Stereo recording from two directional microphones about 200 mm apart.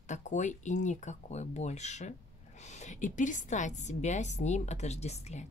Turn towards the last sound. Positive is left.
turn(degrees=35)  # may be behind; listen again after turning